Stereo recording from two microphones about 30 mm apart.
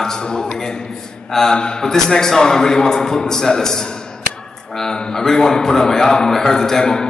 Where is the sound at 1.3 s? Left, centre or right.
Centre.